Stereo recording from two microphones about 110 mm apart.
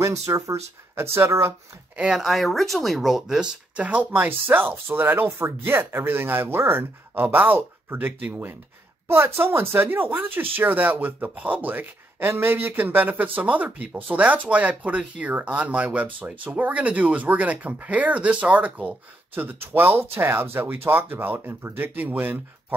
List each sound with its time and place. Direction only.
0.0 s speech: 25° right (ahead or behind)
2.0 s speech: 5° right (ahead or behind)